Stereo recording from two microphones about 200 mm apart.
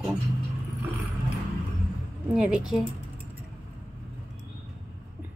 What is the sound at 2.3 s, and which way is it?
Speech, 5° right (ahead or behind).